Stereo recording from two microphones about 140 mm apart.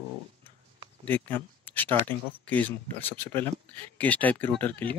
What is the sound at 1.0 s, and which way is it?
Speech, 10° left (ahead or behind).